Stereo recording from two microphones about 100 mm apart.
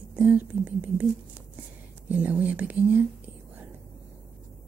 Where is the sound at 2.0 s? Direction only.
15° right (ahead or behind).